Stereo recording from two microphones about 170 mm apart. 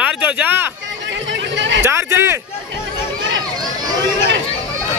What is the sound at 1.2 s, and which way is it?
Chatter, 90° right.